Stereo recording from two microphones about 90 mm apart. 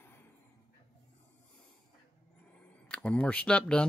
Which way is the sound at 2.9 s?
15° left (ahead or behind).